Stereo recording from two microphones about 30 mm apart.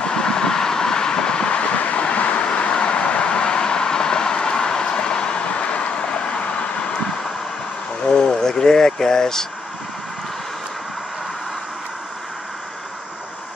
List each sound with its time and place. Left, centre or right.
0.0 s vehicle: left
8.1 s vehicle: left